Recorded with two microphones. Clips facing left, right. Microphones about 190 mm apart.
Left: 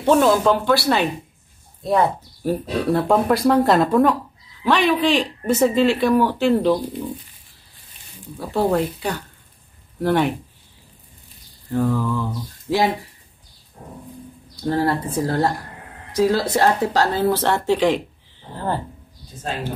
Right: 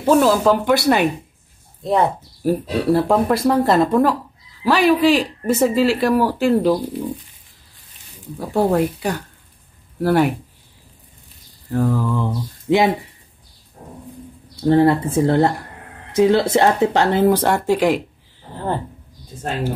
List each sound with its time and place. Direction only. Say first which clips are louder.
0.0 s speech: right 1 dB; 5° right (ahead or behind); by 2.0 s 20° right (ahead or behind)
2.4 s speech: right 3 dB; centre (ahead or behind)
8.4 s speech: right 2 dB; 10° right (ahead or behind)
11.7 s speech: right 1 dB; 5° right (ahead or behind)
12.2 s speech: right 3 dB; 20° right (ahead or behind)
14.6 s speech: right 6 dB; 25° right (ahead or behind); by 18.0 s 10° right (ahead or behind)